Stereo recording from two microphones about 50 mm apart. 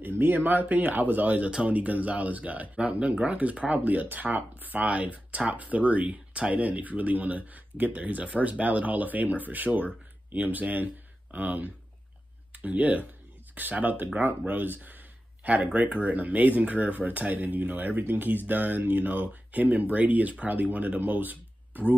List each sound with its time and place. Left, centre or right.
0.0 s speech: right